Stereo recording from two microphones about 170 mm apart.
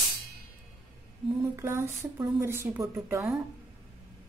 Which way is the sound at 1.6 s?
15° right (ahead or behind).